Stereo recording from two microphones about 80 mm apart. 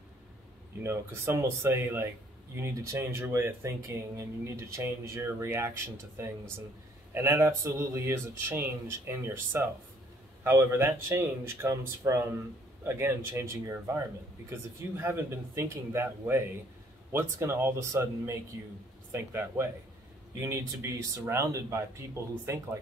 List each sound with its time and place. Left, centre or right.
0.8 s speech: right